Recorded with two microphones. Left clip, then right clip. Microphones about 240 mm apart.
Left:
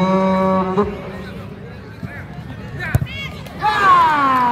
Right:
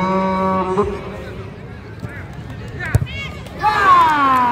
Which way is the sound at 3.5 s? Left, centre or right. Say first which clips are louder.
Right 1 dB; left.